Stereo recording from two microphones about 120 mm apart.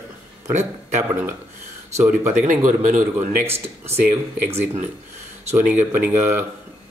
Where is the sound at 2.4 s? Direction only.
90° right.